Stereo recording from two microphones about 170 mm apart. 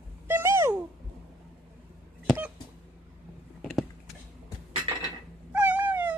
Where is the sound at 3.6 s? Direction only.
Centre (ahead or behind).